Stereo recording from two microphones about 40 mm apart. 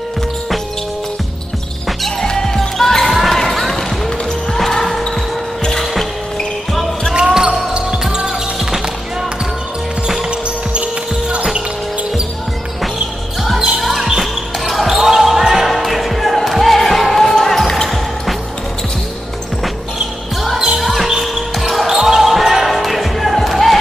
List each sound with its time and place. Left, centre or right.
1.9 s music: centre
2.2 s basketball bounce: centre
5.6 s music: centre
7.4 s basketball bounce: right
10.7 s music: right
13.7 s basketball bounce: centre
17.8 s music: centre
20.5 s music: centre
20.8 s basketball bounce: centre